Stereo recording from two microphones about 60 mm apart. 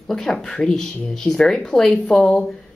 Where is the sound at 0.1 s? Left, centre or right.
Centre.